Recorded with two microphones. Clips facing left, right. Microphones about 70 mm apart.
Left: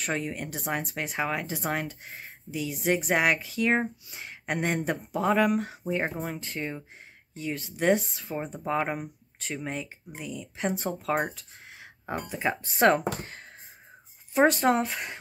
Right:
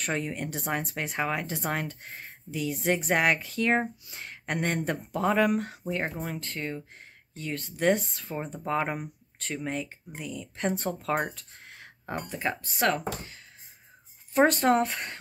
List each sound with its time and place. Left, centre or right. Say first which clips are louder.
0.0 s speech: even; centre
12.7 s speech: left 6 dB; left
14.3 s speech: even; centre